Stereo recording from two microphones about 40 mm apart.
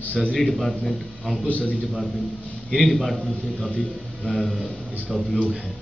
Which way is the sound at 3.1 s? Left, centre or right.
Centre.